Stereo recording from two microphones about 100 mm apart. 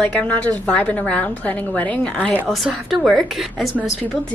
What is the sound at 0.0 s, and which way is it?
A woman's voice, 15° left (ahead or behind).